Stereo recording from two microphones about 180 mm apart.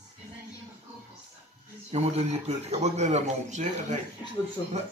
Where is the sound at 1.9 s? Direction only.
35° right (ahead or behind).